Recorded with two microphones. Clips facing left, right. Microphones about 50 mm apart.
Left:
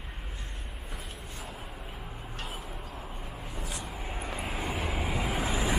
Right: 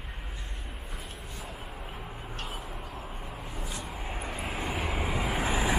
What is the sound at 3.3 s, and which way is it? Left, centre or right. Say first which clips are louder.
Vehicle: left 1 dB; centre.